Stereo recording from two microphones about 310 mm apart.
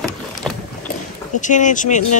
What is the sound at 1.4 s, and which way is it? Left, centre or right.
Speech, left.